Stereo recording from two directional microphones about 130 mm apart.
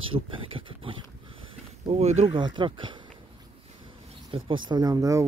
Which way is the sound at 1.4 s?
55° right (ahead or behind).